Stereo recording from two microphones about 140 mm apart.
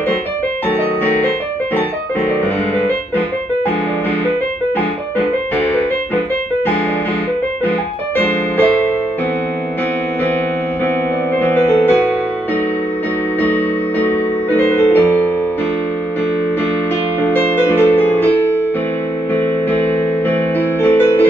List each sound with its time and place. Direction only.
11.3 s music: 15° left (ahead or behind)
13.4 s music: 15° left (ahead or behind)
17.2 s music: 15° left (ahead or behind)
19.7 s music: 15° left (ahead or behind)